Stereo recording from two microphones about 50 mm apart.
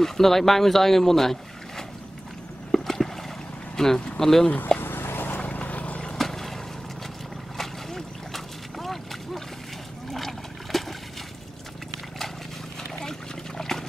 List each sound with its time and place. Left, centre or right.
0.0 s speech: centre
2.7 s boat: centre
3.7 s speech: centre
4.7 s a sound: left
5.4 s vehicle: left
6.1 s boat: centre
10.0 s a sound: centre
13.6 s water: centre